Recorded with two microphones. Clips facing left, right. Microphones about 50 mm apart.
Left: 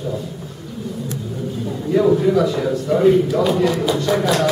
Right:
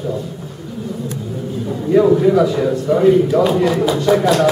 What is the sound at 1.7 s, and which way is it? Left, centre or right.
A man's voice, centre.